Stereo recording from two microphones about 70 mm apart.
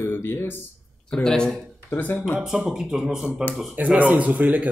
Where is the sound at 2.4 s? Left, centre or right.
Centre.